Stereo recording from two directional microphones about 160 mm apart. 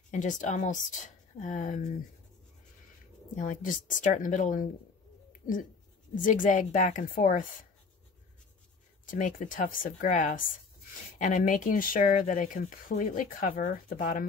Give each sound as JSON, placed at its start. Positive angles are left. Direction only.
{"t": 0.1, "sound": "a woman's voice", "side_deg": 50}
{"t": 3.3, "sound": "a woman's voice", "side_deg": 55}
{"t": 6.2, "sound": "a woman's voice", "side_deg": 55}
{"t": 9.0, "sound": "speech", "side_deg": 55}